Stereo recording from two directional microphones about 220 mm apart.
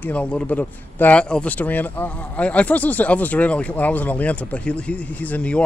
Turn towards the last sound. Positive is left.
turn(degrees=5)  # may be behind; listen again after turning